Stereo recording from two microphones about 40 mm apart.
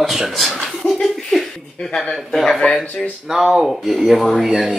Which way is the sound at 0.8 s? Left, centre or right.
Left.